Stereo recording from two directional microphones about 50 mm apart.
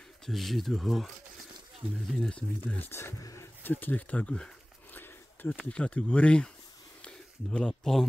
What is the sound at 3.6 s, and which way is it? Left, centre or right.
Speech, left.